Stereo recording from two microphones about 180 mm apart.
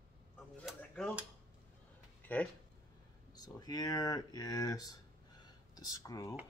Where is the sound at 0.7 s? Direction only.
Centre (ahead or behind).